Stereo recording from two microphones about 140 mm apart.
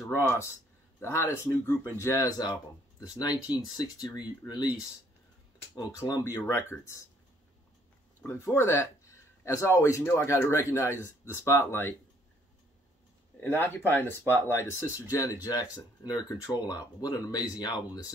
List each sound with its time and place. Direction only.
0.1 s speech: 20° left (ahead or behind)
5.8 s speech: 25° left (ahead or behind)
8.2 s speech: 15° left (ahead or behind)
13.4 s speech: 15° left (ahead or behind)